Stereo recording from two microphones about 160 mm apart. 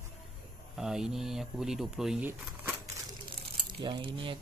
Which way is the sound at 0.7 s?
5° right (ahead or behind).